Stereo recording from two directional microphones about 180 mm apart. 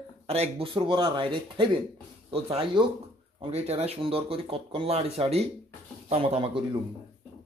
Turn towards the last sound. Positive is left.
turn(degrees=-30)  # may be behind; listen again after turning